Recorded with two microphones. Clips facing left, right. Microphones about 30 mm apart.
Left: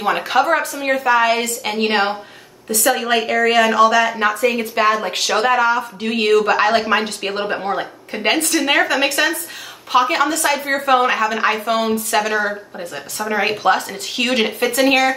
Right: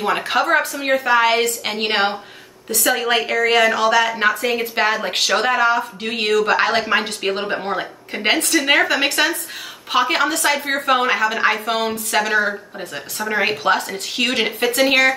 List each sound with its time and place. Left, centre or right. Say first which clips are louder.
0.0 s a woman's voice: left 2 dB; centre